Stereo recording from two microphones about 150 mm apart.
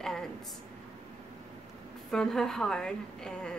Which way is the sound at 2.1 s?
5° left (ahead or behind).